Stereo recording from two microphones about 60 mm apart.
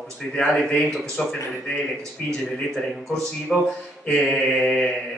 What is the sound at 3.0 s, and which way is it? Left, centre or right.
Speech, centre.